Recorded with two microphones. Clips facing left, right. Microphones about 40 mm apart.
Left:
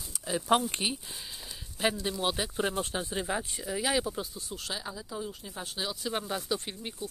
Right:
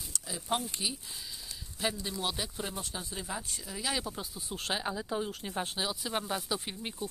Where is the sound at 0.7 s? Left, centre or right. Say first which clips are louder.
Left 4 dB; left.